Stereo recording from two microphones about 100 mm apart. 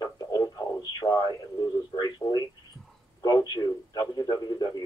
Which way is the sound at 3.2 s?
40° left (ahead or behind).